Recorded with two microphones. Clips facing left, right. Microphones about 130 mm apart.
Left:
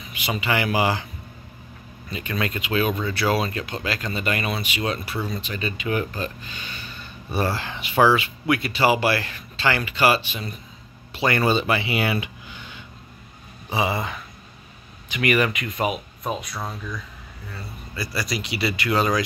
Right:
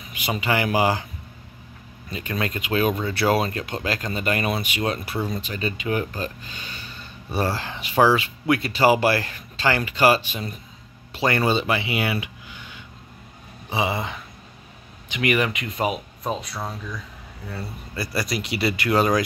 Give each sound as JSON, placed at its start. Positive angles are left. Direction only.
{"t": 0.1, "sound": "speech", "side_deg": -45}
{"t": 2.0, "sound": "speech", "side_deg": -40}
{"t": 5.4, "sound": "speech", "side_deg": -35}
{"t": 11.4, "sound": "speech", "side_deg": -20}
{"t": 13.7, "sound": "speech", "side_deg": -20}
{"t": 17.5, "sound": "speech", "side_deg": -60}